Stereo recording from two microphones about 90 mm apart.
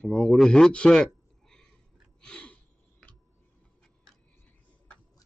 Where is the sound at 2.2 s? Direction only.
10° left (ahead or behind).